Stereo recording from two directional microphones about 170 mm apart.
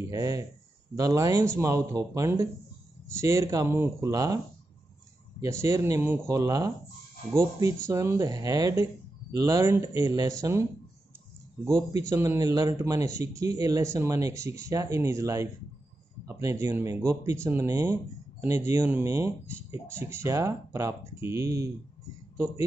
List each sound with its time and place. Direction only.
0.1 s speech: 20° right (ahead or behind)
5.4 s speech: 15° right (ahead or behind)
12.0 s speech: 15° right (ahead or behind)